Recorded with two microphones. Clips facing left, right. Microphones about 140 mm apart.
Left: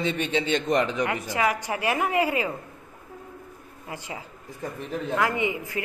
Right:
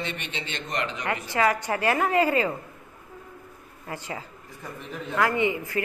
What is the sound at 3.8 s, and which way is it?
Speech, 15° left (ahead or behind).